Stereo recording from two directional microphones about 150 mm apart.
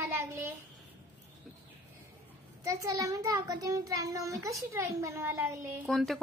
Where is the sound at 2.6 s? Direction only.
20° right (ahead or behind).